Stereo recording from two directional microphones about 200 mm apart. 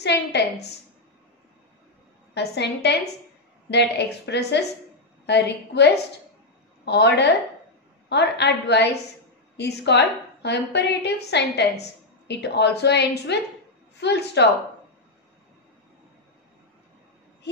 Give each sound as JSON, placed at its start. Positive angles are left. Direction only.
{"t": 0.0, "sound": "a woman's voice", "side_deg": 55}
{"t": 2.3, "sound": "a woman's voice", "side_deg": 60}